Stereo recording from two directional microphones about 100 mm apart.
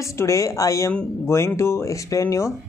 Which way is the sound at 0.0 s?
30° left (ahead or behind).